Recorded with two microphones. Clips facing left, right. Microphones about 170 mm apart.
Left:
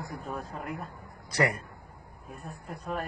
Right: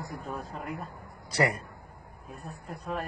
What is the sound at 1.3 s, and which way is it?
Speech, 25° right (ahead or behind).